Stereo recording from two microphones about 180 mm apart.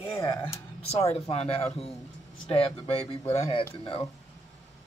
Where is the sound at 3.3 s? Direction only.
35° left (ahead or behind).